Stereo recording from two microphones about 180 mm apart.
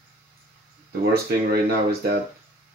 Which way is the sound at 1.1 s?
60° right (ahead or behind).